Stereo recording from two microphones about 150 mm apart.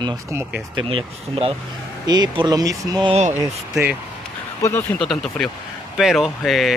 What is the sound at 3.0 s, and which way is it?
Speech, 45° right (ahead or behind).